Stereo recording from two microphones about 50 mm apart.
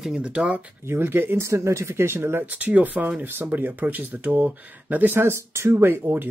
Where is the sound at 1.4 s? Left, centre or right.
Right.